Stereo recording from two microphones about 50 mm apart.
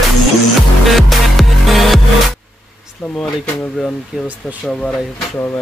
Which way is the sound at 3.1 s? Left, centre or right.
Centre.